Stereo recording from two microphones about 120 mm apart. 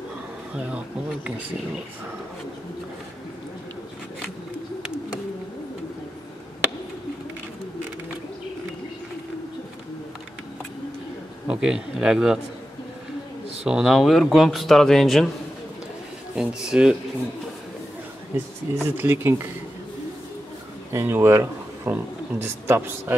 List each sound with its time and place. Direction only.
0.6 s a man's voice: 10° right (ahead or behind)
11.4 s a man's voice: 5° right (ahead or behind)
13.7 s speech: 5° right (ahead or behind)
16.3 s a man's voice: 5° right (ahead or behind)
18.3 s speech: 20° right (ahead or behind)
20.9 s speech: 20° right (ahead or behind)